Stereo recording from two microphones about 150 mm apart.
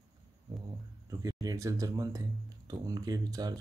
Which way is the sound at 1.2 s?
25° right (ahead or behind).